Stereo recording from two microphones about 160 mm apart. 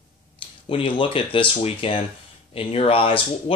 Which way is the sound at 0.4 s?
35° left (ahead or behind).